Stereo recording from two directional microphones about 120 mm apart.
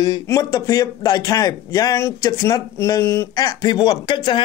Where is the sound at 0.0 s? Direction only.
30° left (ahead or behind).